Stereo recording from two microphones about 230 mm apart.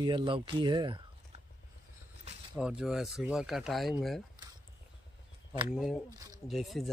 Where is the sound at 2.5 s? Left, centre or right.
Centre.